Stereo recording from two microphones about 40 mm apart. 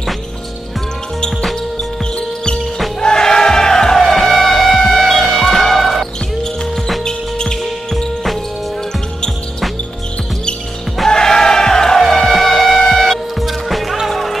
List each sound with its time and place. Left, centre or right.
1.4 s music: centre
2.1 s music: left; by 6.0 s centre
6.4 s music: centre
11.1 s music: centre